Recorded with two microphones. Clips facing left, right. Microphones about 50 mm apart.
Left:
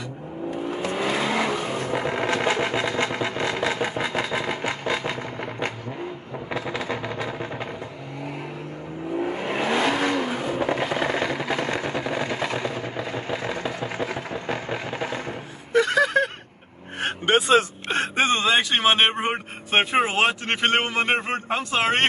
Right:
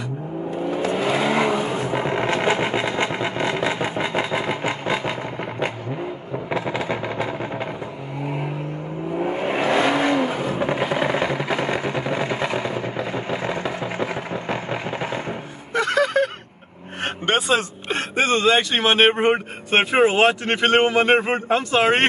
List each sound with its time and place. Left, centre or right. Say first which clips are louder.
0.9 s vehicle: right 3 dB; centre
6.5 s a sound: right 4 dB; centre
9.2 s vehicle: right 4 dB; centre
15.7 s gasp: even; centre
18.1 s a sound: right 4 dB; centre
18.8 s a man's voice: right 3 dB; centre